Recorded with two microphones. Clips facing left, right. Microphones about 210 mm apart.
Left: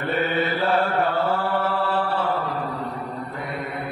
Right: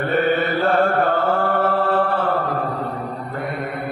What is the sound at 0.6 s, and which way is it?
Mantra, 45° right (ahead or behind).